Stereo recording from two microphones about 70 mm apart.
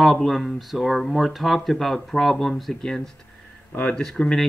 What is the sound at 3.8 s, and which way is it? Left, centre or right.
Speech, centre.